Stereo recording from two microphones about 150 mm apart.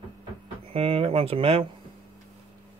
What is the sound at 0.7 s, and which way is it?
Speech, 40° right (ahead or behind).